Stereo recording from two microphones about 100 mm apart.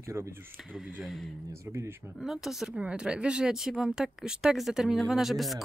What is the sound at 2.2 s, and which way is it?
A woman's voice, 5° right (ahead or behind).